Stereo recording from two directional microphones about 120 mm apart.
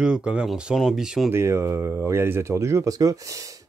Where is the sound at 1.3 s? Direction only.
20° right (ahead or behind).